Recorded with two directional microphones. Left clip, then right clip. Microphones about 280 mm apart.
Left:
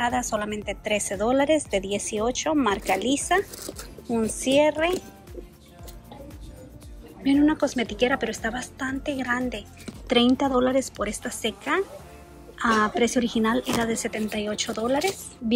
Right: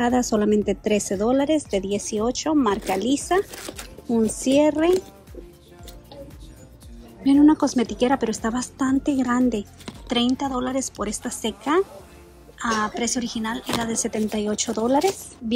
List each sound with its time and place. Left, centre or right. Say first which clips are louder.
0.0 s a woman's voice: right 4 dB; right
3.5 s speech: right 3 dB; centre
4.1 s a woman's voice: right 2 dB; centre
7.2 s a woman's voice: right 4 dB; centre